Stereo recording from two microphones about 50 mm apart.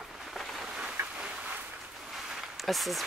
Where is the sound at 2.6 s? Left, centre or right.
Centre.